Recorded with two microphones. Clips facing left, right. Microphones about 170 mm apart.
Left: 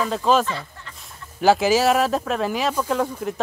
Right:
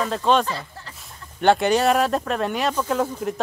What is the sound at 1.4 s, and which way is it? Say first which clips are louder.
Speech: left 1 dB; 5° left (ahead or behind).